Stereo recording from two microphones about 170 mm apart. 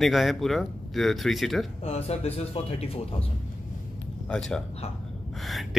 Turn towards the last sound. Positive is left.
turn(degrees=0)  # may be behind; listen again after turning